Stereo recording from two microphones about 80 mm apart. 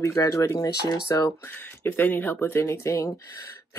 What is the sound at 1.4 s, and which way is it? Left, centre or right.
Speech, left.